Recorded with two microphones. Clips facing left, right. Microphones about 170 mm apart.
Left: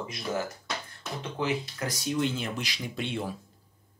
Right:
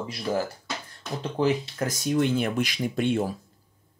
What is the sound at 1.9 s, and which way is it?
Speech, 50° right (ahead or behind).